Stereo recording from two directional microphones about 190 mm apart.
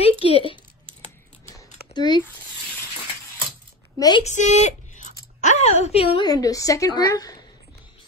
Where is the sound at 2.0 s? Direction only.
25° left (ahead or behind).